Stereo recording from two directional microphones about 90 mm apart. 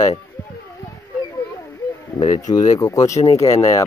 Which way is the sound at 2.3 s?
40° left (ahead or behind).